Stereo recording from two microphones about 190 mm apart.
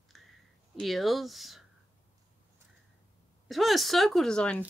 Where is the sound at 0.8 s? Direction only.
Centre (ahead or behind).